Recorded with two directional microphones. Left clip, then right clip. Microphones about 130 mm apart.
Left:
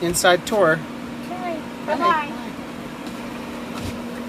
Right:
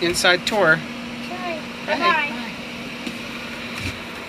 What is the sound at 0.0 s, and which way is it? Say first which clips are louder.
Speech: even; 25° left (ahead or behind).